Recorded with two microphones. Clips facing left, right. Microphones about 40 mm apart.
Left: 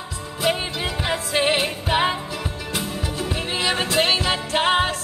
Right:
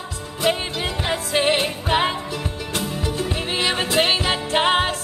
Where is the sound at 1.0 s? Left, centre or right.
Centre.